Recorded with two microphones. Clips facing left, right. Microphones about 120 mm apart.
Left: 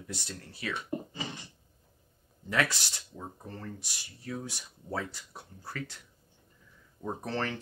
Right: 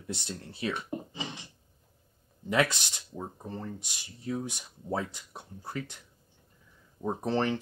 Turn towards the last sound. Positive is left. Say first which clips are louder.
# right 5 dB
turn(degrees=-20)  # may be behind; listen again after turning